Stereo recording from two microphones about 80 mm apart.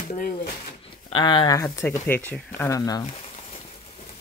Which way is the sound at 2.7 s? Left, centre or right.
Left.